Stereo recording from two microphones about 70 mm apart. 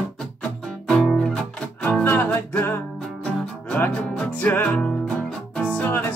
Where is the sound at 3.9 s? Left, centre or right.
Left.